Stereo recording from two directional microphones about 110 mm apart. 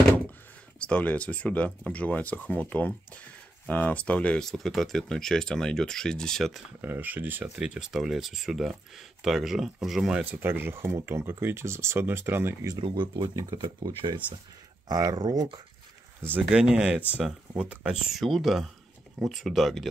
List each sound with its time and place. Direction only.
0.7 s speech: 10° left (ahead or behind)
6.8 s speech: 15° right (ahead or behind)
10.2 s speech: 20° right (ahead or behind)
12.8 s speech: 45° right (ahead or behind)
16.2 s speech: 20° right (ahead or behind)
16.4 s speech: 5° right (ahead or behind)